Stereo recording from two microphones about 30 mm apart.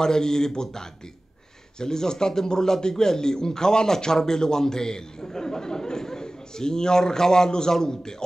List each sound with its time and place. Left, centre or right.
0.0 s a man's voice: left